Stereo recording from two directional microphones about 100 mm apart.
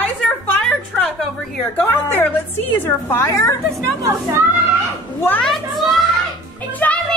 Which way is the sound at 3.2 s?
35° left (ahead or behind).